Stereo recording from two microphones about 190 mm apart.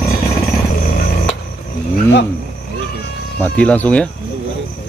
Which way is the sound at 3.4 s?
5° left (ahead or behind).